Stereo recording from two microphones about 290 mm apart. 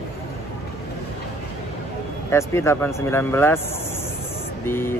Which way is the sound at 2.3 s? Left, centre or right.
Centre.